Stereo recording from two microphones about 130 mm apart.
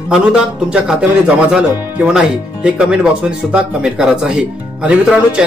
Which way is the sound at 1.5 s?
5° right (ahead or behind).